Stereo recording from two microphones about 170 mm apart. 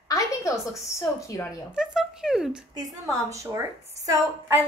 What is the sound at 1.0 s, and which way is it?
Speech, 15° left (ahead or behind).